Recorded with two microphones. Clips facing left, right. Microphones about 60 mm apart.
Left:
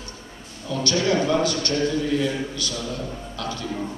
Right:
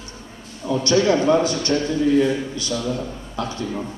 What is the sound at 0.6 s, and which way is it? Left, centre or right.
A man's voice, right.